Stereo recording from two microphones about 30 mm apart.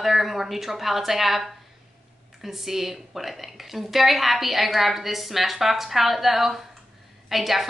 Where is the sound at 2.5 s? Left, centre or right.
Centre.